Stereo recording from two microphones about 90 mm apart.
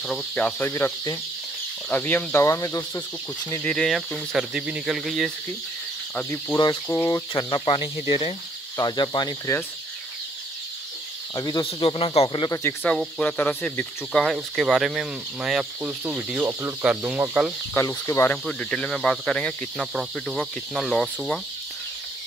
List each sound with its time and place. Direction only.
0.1 s speech: 10° left (ahead or behind)
0.6 s speech: 25° left (ahead or behind)
2.4 s speech: 35° left (ahead or behind)
3.6 s speech: 5° left (ahead or behind)
6.9 s speech: 40° left (ahead or behind); by 8.4 s 75° left (ahead or behind)
8.7 s speech: 50° left (ahead or behind)
11.3 s speech: 45° left (ahead or behind)
11.6 s speech: 85° left
13.2 s speech: 20° left (ahead or behind)
14.1 s speech: centre (ahead or behind)
16.1 s speech: 15° right (ahead or behind)
17.7 s speech: 30° left (ahead or behind)
18.4 s speech: 5° left (ahead or behind)
19.9 s speech: centre (ahead or behind)